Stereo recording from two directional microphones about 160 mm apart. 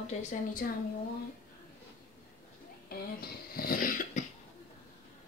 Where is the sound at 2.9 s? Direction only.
70° left (ahead or behind).